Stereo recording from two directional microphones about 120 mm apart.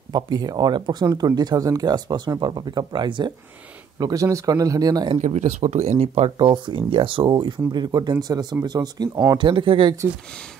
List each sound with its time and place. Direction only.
0.1 s speech: 35° right (ahead or behind)
4.0 s speech: 30° right (ahead or behind)
5.2 s speech: 80° right; by 6.3 s 60° right (ahead or behind)
6.3 s speech: 40° right (ahead or behind)